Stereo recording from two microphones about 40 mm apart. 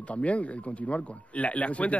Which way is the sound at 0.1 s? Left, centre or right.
Left.